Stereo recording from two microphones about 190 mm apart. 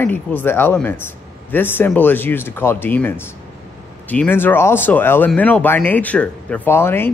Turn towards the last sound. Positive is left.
turn(degrees=10)  # may be behind; listen again after turning